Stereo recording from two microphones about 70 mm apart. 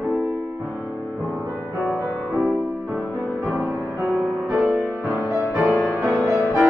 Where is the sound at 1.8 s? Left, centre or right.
Centre.